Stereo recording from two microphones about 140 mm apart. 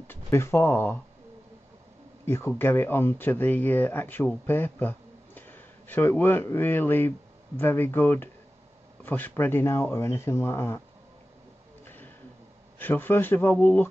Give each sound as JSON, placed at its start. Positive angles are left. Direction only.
{"t": 0.1, "sound": "speech", "side_deg": 20}
{"t": 2.2, "sound": "speech", "side_deg": 15}
{"t": 12.7, "sound": "speech", "side_deg": 15}